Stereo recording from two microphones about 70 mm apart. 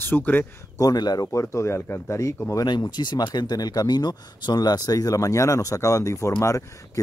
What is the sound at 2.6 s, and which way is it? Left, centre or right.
Speech, left.